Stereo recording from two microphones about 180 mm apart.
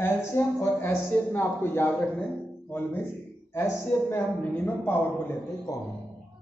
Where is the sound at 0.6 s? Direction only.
10° left (ahead or behind).